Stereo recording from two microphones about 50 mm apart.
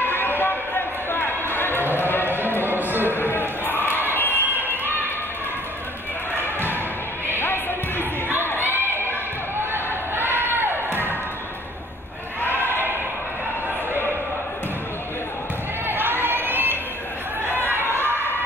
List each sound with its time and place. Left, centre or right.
0.0 s a sound: left
2.0 s run: left
2.9 s music: right
3.2 s a sound: left
7.3 s music: left
8.0 s crowd: right
8.6 s a sound: right
10.5 s music: right
12.4 s basketball bounce: right
15.9 s crowd: right
17.5 s chatter: right